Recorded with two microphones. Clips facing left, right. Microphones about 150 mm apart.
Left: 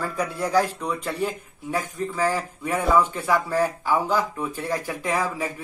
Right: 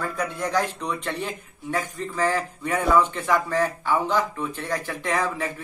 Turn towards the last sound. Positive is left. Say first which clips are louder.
# even
turn(degrees=10)  # may be behind; listen again after turning